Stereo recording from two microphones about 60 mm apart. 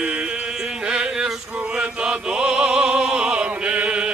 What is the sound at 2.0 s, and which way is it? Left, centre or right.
Opera, centre.